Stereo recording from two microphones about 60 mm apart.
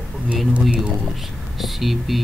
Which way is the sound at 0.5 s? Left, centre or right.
Right.